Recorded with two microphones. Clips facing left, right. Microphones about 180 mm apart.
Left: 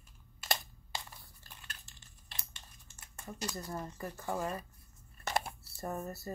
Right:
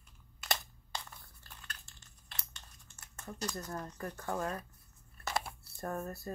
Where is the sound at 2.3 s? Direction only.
15° left (ahead or behind).